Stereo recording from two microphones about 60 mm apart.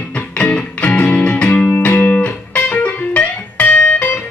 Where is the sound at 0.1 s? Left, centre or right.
Left.